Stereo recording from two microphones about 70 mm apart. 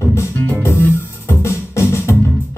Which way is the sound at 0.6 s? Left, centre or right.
Left.